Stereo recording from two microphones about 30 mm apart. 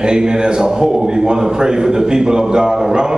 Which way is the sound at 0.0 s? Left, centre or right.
Right.